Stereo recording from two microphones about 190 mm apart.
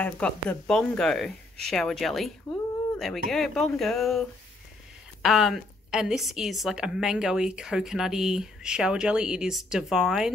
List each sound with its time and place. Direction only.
0.0 s a woman's voice: 5° left (ahead or behind)